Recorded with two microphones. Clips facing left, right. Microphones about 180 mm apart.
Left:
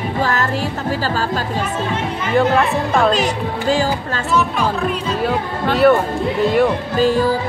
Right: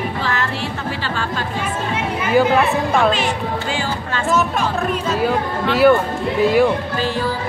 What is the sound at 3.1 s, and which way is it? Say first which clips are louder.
Speech: left 2 dB; 40° left (ahead or behind).